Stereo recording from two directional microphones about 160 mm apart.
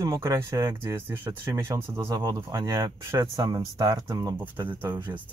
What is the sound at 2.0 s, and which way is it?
Speech, 25° right (ahead or behind).